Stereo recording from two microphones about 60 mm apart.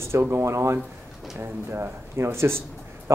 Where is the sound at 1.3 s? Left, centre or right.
Right.